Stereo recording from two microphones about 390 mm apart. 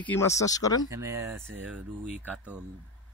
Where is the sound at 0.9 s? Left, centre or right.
Centre.